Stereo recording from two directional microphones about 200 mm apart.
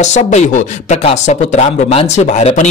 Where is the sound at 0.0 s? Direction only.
35° left (ahead or behind).